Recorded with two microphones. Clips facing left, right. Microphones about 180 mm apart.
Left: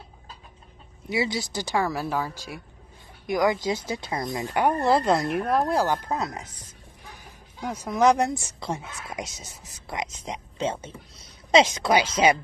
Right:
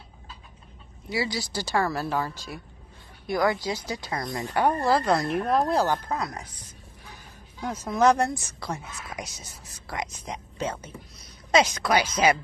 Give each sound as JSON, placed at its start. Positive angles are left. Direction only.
{"t": 1.1, "sound": "speech", "side_deg": 20}
{"t": 6.0, "sound": "speech", "side_deg": 25}
{"t": 7.7, "sound": "speech", "side_deg": 15}